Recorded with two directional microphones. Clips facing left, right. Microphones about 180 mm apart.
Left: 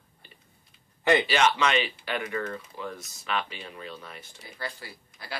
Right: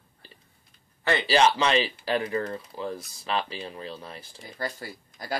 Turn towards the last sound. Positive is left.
turn(degrees=-45)  # may be behind; listen again after turning